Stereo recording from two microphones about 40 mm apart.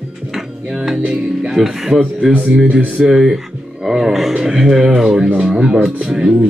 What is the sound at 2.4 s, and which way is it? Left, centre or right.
Speech, right.